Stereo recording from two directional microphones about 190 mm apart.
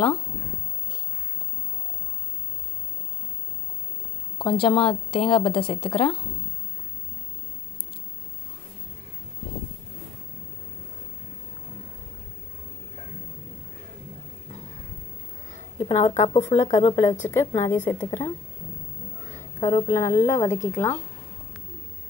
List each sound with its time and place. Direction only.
4.4 s a woman's voice: 25° left (ahead or behind)
15.8 s a woman's voice: 30° left (ahead or behind)
16.2 s a woman's voice: 15° left (ahead or behind)
19.3 s speech: 15° left (ahead or behind)
20.4 s a woman's voice: 40° left (ahead or behind)
20.7 s a woman's voice: 10° left (ahead or behind)